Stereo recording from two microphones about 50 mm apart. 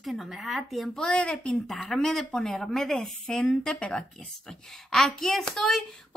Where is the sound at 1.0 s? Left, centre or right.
Centre.